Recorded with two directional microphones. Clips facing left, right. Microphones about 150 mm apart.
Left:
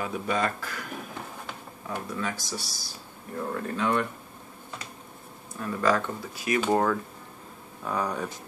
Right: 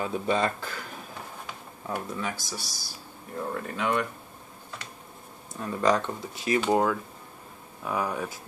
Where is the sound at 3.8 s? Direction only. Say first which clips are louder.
Left 1 dB; 15° right (ahead or behind).